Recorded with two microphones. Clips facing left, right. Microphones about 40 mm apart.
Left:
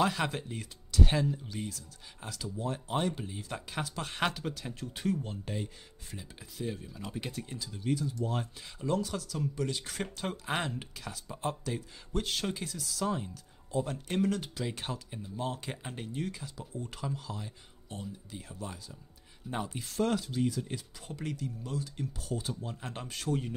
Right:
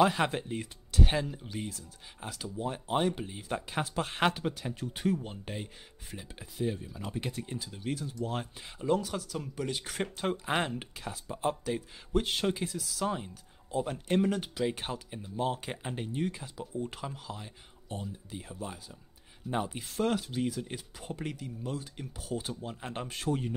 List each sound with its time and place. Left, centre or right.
0.0 s speech: centre
20.2 s speech: right